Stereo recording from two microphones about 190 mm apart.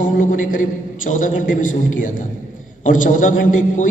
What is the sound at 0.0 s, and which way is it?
A woman's voice, 45° left (ahead or behind).